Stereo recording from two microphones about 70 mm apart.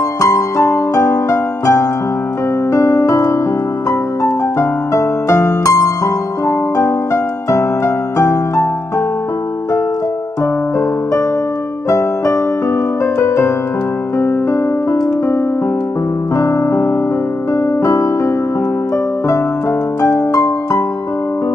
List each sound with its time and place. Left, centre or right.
0.2 s music: left
7.5 s music: left
13.0 s music: left
16.3 s music: left
20.0 s music: left